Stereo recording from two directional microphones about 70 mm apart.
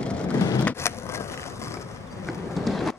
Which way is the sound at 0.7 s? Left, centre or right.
Left.